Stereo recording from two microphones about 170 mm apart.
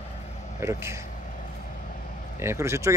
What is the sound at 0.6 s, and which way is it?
Speech, 15° right (ahead or behind).